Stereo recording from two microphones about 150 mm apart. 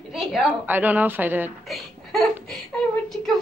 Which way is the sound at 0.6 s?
10° right (ahead or behind).